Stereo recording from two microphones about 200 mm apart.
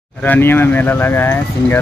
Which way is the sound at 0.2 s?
10° left (ahead or behind).